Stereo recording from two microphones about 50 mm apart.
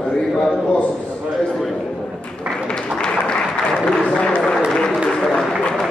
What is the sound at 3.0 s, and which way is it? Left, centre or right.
Applause, centre.